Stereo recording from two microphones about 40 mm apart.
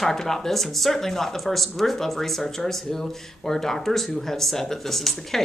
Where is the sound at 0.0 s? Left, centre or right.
Centre.